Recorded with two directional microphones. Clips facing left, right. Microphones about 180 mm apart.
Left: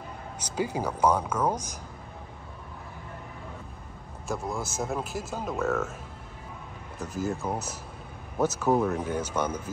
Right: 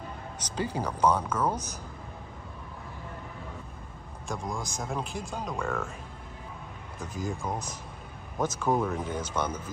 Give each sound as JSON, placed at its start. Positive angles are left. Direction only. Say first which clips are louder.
{"t": 0.4, "sound": "speech", "louder": "left 2 dB", "side_deg": 10}
{"t": 4.3, "sound": "a man's voice", "louder": "left 3 dB", "side_deg": 5}
{"t": 7.0, "sound": "a man's voice", "louder": "left 4 dB", "side_deg": 5}